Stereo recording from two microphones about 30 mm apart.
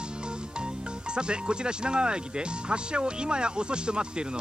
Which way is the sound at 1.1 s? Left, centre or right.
Right.